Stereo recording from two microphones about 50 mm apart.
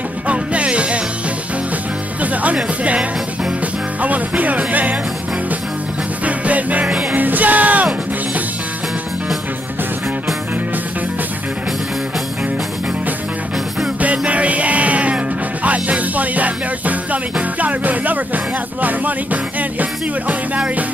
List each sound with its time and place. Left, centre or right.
0.3 s music: right
2.4 s speech: right
4.0 s music: right
6.2 s music: right
6.9 s music: centre
7.2 s music: right
14.0 s music: right